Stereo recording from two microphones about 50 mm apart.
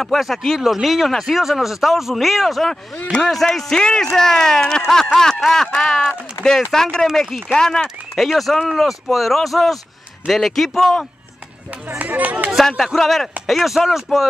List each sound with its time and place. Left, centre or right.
0.0 s speech: centre
5.1 s a sound: centre
5.4 s speech: centre
6.7 s speech: centre
7.8 s speech: centre
12.0 s speech: right
12.6 s speech: centre